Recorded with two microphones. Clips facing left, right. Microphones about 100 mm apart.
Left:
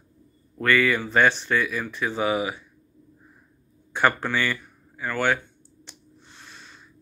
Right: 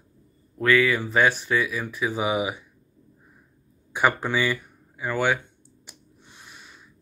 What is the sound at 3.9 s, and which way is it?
Speech, 10° right (ahead or behind).